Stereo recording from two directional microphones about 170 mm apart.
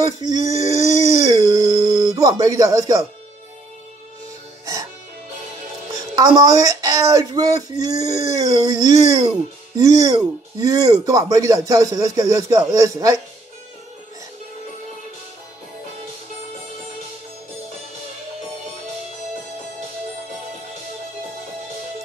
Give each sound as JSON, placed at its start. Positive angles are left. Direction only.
{"t": 0.0, "sound": "speech", "side_deg": -20}
{"t": 5.9, "sound": "speech", "side_deg": -20}